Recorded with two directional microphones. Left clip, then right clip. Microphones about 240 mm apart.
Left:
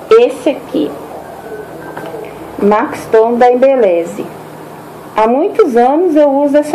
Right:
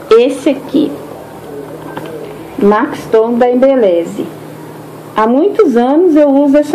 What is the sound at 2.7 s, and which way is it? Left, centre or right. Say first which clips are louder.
Speech: left 3 dB; centre.